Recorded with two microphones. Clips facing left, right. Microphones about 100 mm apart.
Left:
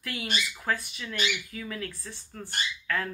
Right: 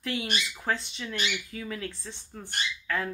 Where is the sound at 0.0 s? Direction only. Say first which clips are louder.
Right 2 dB; 25° right (ahead or behind).